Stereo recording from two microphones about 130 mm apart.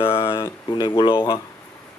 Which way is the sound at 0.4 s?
35° left (ahead or behind).